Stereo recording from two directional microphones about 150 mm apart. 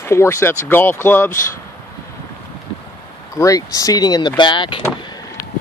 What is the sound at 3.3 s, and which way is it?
Speech, 20° left (ahead or behind).